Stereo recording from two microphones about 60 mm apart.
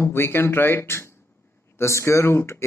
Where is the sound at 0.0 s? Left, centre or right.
Left.